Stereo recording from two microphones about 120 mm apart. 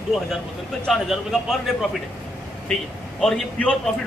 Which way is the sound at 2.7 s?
5° left (ahead or behind).